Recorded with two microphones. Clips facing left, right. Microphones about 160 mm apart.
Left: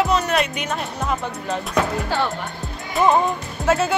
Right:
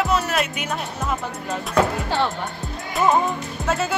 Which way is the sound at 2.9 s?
Centre (ahead or behind).